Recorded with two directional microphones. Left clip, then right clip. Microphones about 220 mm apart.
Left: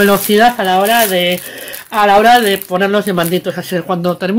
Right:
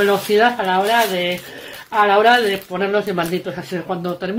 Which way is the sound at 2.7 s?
50° left (ahead or behind).